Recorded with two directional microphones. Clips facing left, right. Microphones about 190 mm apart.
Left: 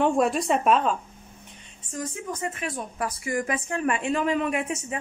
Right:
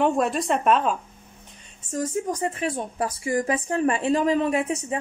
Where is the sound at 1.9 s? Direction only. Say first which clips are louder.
Right 6 dB; 40° right (ahead or behind).